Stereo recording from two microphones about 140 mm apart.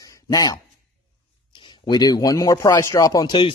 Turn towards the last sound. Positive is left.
turn(degrees=35)  # may be behind; listen again after turning